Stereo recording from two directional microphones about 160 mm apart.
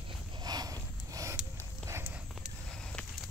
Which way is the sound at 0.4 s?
25° right (ahead or behind).